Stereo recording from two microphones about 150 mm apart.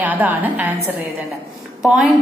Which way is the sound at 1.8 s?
5° right (ahead or behind).